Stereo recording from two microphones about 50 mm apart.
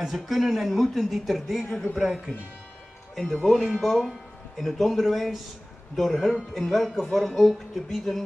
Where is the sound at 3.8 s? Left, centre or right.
Centre.